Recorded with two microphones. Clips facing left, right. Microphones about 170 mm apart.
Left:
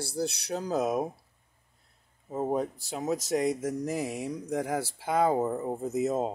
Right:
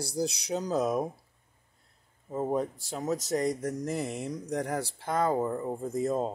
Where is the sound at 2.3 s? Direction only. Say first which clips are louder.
Even; 5° left (ahead or behind).